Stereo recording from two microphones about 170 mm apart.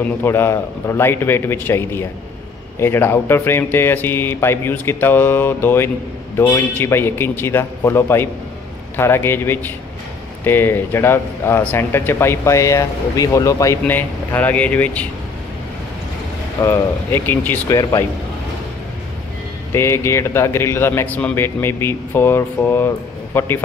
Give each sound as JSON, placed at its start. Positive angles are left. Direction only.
{"t": 0.2, "sound": "speech", "side_deg": 15}
{"t": 16.6, "sound": "speech", "side_deg": 15}
{"t": 19.7, "sound": "speech", "side_deg": 15}